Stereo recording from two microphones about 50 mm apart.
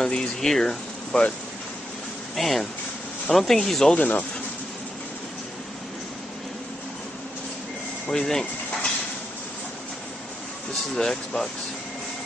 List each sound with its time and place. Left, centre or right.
0.0 s speech: centre
2.3 s speech: centre
3.9 s speech: left
8.1 s speech: centre
11.0 s speech: centre